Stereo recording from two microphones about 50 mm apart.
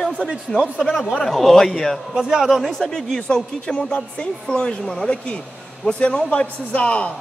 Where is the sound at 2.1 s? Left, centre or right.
Centre.